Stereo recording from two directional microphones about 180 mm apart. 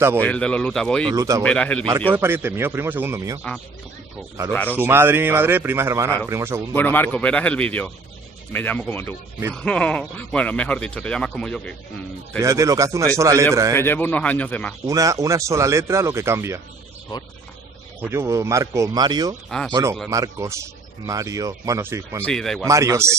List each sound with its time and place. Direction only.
0.2 s speech: 5° left (ahead or behind)
1.0 s speech: 20° right (ahead or behind)
1.4 s speech: 5° left (ahead or behind)
2.1 s speech: 10° right (ahead or behind)
4.5 s speech: 10° left (ahead or behind)
4.7 s speech: 15° right (ahead or behind)
6.7 s speech: 10° left (ahead or behind)
12.4 s speech: 20° right (ahead or behind)
13.7 s speech: 10° left (ahead or behind)
14.9 s speech: 15° right (ahead or behind)
18.0 s speech: 15° right (ahead or behind)
22.2 s speech: 5° left (ahead or behind)
22.7 s speech: 15° right (ahead or behind)